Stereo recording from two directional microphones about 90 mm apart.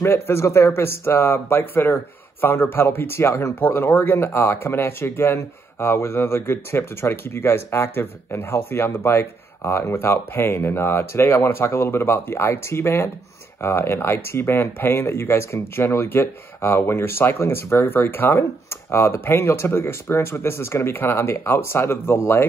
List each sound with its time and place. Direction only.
0.0 s speech: 30° left (ahead or behind)